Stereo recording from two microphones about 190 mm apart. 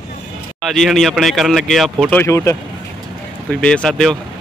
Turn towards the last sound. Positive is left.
turn(degrees=5)  # may be behind; listen again after turning